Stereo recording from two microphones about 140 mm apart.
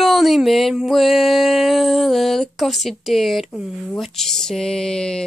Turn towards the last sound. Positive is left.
turn(degrees=5)  # may be behind; listen again after turning